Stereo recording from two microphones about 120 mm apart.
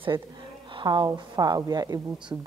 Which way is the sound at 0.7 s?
40° right (ahead or behind).